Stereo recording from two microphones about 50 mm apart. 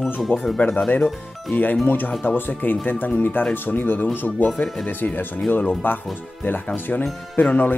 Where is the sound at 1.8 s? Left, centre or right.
Left.